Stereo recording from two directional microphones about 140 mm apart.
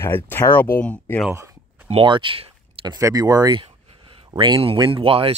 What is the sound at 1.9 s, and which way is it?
Speech, 35° right (ahead or behind).